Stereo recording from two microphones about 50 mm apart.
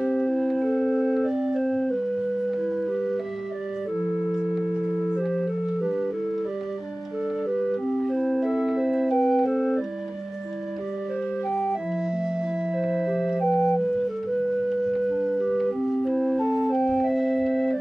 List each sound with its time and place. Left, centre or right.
0.0 s organ: centre
1.6 s music: centre
7.5 s music: centre
12.7 s music: centre
13.5 s music: centre
14.9 s music: centre
16.4 s music: centre
16.7 s organ: centre